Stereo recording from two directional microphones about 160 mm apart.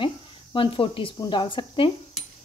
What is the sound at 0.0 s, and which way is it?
Speech, 30° left (ahead or behind).